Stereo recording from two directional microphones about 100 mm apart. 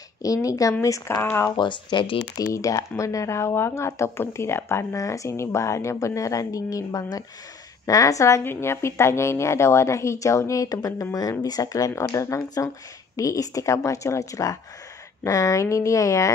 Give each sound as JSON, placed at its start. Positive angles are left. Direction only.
{"t": 0.2, "sound": "a woman's voice", "side_deg": 35}
{"t": 1.6, "sound": "speech", "side_deg": 50}
{"t": 2.5, "sound": "a woman's voice", "side_deg": 30}